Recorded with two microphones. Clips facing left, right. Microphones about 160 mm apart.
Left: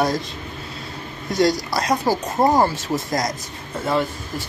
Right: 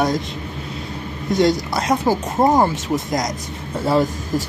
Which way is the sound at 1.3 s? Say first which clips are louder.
Right 2 dB; 20° right (ahead or behind).